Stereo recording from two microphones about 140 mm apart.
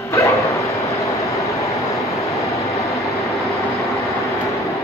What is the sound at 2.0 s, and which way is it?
Vehicle, 20° left (ahead or behind).